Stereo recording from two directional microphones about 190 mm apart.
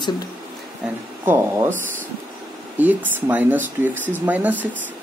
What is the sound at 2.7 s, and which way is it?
Speech, 10° right (ahead or behind).